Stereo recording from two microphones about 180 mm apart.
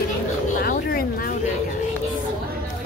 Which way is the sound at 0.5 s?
55° left (ahead or behind).